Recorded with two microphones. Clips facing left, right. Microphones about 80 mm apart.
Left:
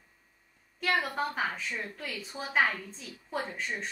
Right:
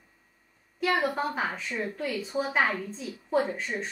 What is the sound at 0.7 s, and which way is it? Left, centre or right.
A woman's voice, centre.